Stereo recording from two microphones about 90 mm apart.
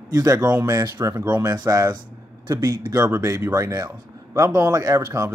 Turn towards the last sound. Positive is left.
turn(degrees=-35)  # may be behind; listen again after turning